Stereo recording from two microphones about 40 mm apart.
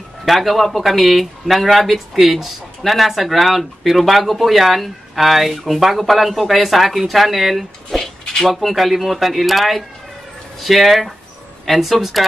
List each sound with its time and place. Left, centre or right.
0.2 s speech: centre